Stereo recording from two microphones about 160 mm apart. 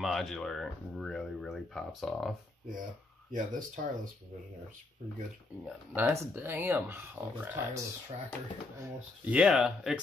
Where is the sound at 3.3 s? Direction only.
55° right (ahead or behind).